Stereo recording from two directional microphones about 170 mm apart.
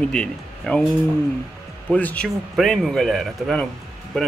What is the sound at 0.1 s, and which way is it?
Speech, 5° left (ahead or behind).